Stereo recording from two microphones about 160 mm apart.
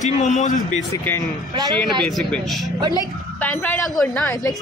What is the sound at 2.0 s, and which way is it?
Speech, 5° left (ahead or behind).